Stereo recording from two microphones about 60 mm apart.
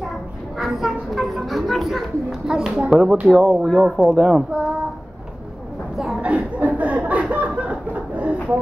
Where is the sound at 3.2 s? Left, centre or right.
Right.